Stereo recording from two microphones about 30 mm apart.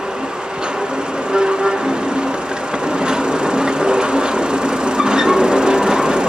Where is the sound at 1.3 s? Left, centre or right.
Right.